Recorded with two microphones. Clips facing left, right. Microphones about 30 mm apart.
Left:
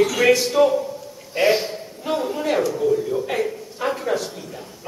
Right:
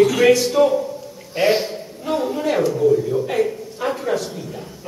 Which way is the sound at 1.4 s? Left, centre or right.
Centre.